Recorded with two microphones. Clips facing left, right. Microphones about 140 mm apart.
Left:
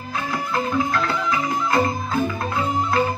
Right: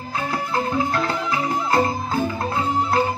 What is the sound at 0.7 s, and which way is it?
Music, 30° right (ahead or behind).